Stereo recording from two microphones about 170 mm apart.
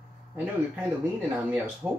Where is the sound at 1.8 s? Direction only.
10° right (ahead or behind).